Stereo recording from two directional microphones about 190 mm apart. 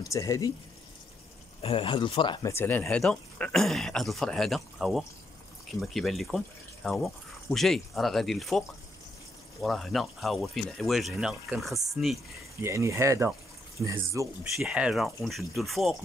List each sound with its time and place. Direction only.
0.0 s speech: 15° left (ahead or behind)
1.6 s speech: 30° left (ahead or behind)
2.5 s speech: 10° left (ahead or behind)
12.6 s speech: 15° right (ahead or behind)
14.6 s speech: 5° right (ahead or behind)